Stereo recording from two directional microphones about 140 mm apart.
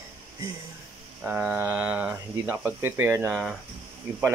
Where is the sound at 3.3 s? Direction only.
5° right (ahead or behind).